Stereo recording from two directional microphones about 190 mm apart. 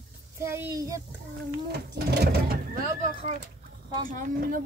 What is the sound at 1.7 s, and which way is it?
Speech, 55° right (ahead or behind).